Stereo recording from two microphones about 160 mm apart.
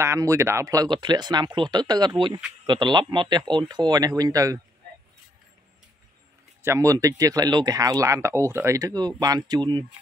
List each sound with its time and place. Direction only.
0.0 s speech: 20° right (ahead or behind)
6.6 s speech: 20° right (ahead or behind)